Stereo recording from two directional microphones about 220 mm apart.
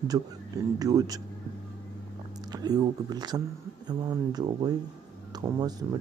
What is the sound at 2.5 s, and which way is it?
Speech, 20° right (ahead or behind).